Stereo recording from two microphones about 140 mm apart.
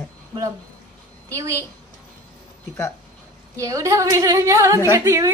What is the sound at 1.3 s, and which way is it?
Speech, 25° right (ahead or behind).